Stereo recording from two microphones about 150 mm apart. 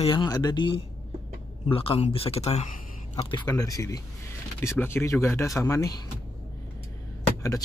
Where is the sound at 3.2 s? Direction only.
30° left (ahead or behind).